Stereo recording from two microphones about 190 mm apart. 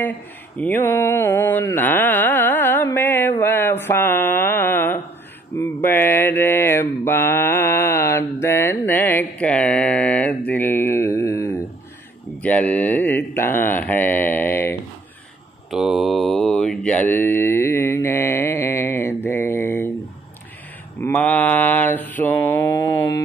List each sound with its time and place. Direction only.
0.6 s carnatic music: 10° left (ahead or behind)
5.6 s mantra: 10° left (ahead or behind)
12.4 s speech: 5° left (ahead or behind)
15.7 s mantra: centre (ahead or behind)
21.0 s mantra: 5° left (ahead or behind)